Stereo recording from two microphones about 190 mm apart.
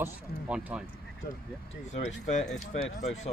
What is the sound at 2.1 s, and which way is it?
Speech, 40° left (ahead or behind).